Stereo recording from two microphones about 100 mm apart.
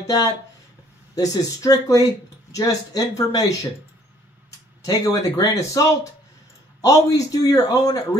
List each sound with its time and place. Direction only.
0.0 s speech: 35° left (ahead or behind)
4.8 s speech: 35° left (ahead or behind)